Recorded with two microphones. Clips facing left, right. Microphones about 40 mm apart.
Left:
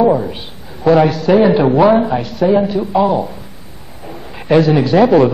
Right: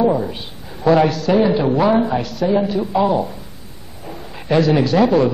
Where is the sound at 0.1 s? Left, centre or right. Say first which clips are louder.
Left 4 dB; centre.